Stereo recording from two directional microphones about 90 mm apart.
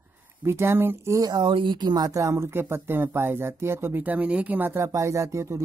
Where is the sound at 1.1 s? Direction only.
45° right (ahead or behind).